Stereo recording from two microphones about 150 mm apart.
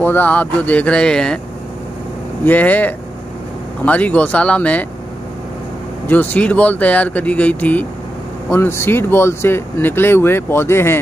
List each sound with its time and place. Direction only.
0.0 s speech: 10° left (ahead or behind)
2.4 s speech: 10° left (ahead or behind)
6.0 s speech: 10° left (ahead or behind)